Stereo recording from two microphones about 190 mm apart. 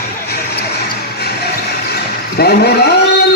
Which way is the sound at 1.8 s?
55° left (ahead or behind).